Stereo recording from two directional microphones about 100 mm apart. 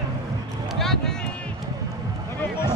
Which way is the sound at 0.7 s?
5° left (ahead or behind).